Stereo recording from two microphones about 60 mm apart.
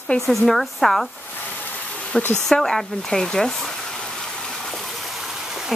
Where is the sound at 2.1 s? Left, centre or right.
Left.